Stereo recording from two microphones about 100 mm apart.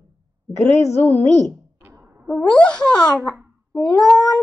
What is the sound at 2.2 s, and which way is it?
A child's voice, 10° left (ahead or behind).